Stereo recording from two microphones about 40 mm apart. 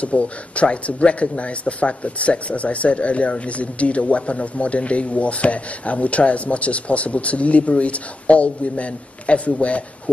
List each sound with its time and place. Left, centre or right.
0.0 s speech: left